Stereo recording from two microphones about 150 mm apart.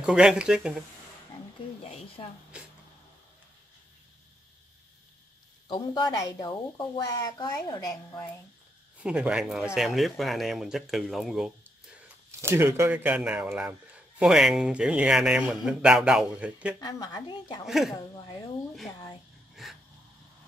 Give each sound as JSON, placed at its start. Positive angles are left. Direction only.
{"t": 0.0, "sound": "speech", "side_deg": -5}
{"t": 1.8, "sound": "speech", "side_deg": 45}
{"t": 5.7, "sound": "speech", "side_deg": 25}
{"t": 9.0, "sound": "speech", "side_deg": -10}
{"t": 12.4, "sound": "speech", "side_deg": -15}
{"t": 16.8, "sound": "speech", "side_deg": 25}
{"t": 17.6, "sound": "speech", "side_deg": 0}
{"t": 19.5, "sound": "wheeze", "side_deg": 0}